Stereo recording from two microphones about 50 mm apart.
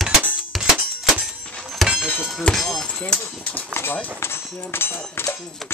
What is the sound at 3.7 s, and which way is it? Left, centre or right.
Speech, left.